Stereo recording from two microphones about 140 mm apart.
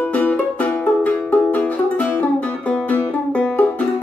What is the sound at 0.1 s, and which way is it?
Music, 10° left (ahead or behind).